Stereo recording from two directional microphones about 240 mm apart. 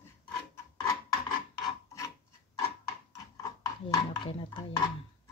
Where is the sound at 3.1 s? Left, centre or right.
Centre.